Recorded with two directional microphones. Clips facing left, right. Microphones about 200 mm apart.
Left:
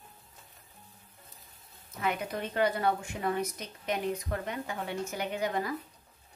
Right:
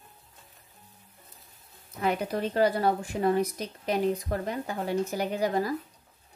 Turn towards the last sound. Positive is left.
turn(degrees=-35)  # may be behind; listen again after turning